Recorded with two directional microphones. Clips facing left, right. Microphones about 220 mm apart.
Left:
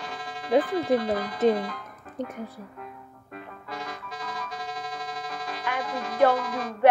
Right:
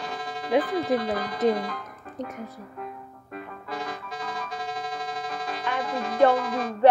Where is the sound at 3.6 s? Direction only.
30° right (ahead or behind).